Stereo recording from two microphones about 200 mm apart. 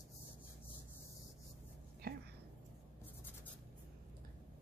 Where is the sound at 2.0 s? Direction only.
50° right (ahead or behind).